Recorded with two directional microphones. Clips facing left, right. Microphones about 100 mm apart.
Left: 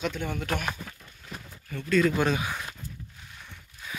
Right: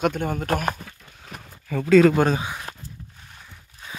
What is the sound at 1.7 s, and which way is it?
Speech, 90° right.